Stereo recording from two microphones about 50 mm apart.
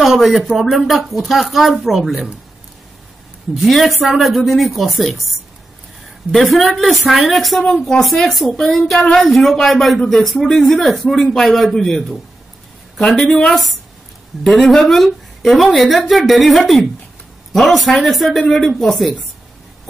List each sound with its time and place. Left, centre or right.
0.0 s speech: centre
3.5 s speech: centre
6.3 s a man's voice: centre
13.5 s speech: centre